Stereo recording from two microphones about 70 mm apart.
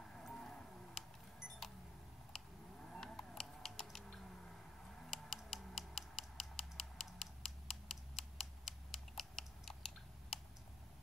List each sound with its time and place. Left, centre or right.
0.2 s music: centre
2.3 s typing: centre